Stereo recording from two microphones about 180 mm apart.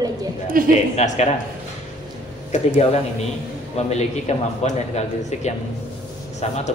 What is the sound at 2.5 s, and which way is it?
A man's voice, 40° left (ahead or behind).